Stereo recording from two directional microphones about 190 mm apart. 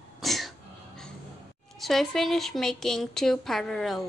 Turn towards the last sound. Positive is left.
turn(degrees=0)  # may be behind; listen again after turning